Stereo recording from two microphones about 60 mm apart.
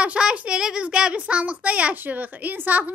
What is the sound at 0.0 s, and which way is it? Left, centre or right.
A child's voice, centre.